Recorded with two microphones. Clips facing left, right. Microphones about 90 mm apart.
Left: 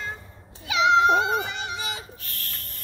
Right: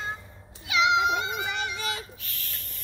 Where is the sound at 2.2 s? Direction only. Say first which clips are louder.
Left 3 dB; 50° left (ahead or behind).